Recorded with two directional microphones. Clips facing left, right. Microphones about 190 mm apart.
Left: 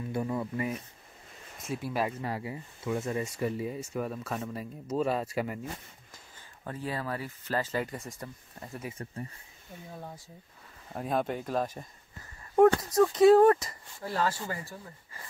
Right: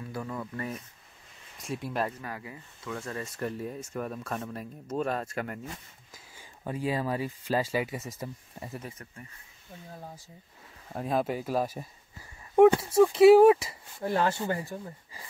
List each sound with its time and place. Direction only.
0.1 s speech: 20° left (ahead or behind)
1.6 s speech: centre (ahead or behind)
2.2 s speech: 25° left (ahead or behind)
3.4 s speech: 5° left (ahead or behind)
6.1 s speech: 10° right (ahead or behind)
8.9 s speech: 35° left (ahead or behind)
10.9 s speech: centre (ahead or behind)
14.0 s speech: 20° right (ahead or behind)